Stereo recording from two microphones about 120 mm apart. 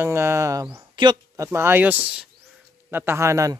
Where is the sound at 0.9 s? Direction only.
40° right (ahead or behind).